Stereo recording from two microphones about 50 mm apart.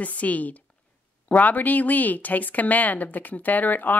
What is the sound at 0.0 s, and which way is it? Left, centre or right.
Speech, left.